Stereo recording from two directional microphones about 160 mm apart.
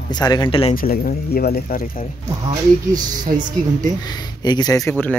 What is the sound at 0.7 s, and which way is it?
Speech, 65° left (ahead or behind).